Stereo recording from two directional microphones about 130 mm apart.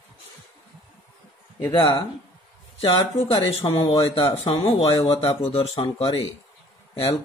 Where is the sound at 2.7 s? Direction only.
55° left (ahead or behind).